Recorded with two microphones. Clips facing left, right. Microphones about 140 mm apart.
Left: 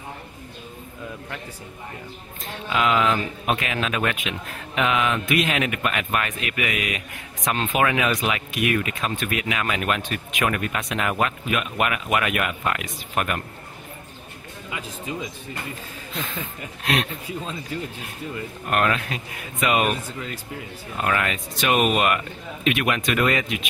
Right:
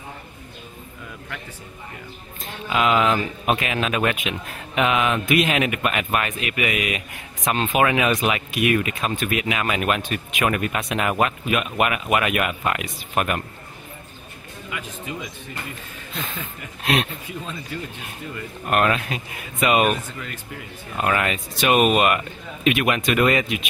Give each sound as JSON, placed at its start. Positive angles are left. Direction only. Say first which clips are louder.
{"t": 2.7, "sound": "speech", "louder": "right 2 dB", "side_deg": -15}
{"t": 8.1, "sound": "speech", "louder": "right 3 dB", "side_deg": -25}
{"t": 8.5, "sound": "speech", "louder": "right 3 dB", "side_deg": -15}
{"t": 18.7, "sound": "speech", "louder": "right 2 dB", "side_deg": -15}
{"t": 21.0, "sound": "speech", "louder": "right 2 dB", "side_deg": -20}